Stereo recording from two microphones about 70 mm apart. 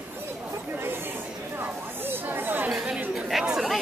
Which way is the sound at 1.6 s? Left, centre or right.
Right.